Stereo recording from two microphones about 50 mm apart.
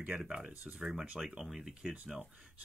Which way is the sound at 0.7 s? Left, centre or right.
Centre.